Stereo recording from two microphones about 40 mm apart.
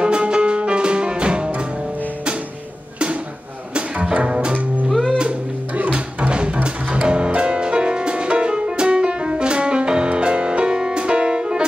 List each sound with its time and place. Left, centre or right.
0.0 s music: right
3.7 s music: right
5.9 s music: right